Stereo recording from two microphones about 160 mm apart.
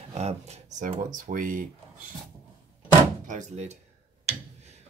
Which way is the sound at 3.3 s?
45° right (ahead or behind).